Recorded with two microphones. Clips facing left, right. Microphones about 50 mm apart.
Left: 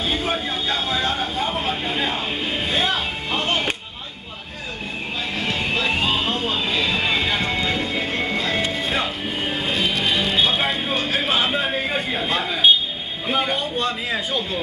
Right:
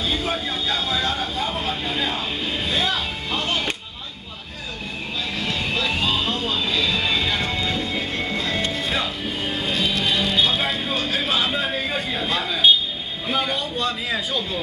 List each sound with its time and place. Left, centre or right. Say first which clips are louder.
0.0 s vehicle: left 1 dB; centre
5.4 s music: left 2 dB; centre
13.3 s a sound: left 2 dB; centre